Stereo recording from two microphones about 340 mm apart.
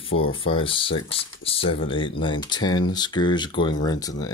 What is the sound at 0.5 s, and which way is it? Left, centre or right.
Speech, centre.